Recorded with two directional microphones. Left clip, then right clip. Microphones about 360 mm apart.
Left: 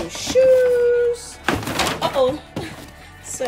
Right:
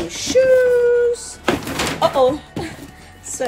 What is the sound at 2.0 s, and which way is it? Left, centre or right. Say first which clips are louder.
Door: right 7 dB; centre.